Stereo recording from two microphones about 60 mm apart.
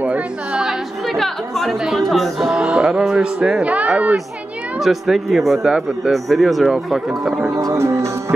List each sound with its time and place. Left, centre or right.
0.5 s chatter: centre
1.0 s speech: centre; by 4.2 s right
4.7 s speech: centre
7.5 s music: right